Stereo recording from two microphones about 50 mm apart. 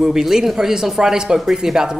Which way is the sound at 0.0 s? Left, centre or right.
Centre.